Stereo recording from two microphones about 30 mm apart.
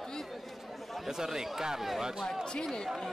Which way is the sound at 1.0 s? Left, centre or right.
Centre.